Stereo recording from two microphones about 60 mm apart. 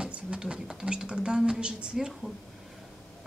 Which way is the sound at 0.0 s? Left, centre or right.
Centre.